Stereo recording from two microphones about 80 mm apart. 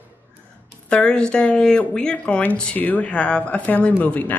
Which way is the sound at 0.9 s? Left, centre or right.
Centre.